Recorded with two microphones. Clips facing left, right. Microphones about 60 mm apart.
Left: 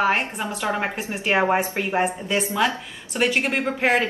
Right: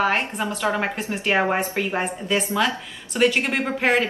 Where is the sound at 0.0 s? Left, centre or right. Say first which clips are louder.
Even; centre.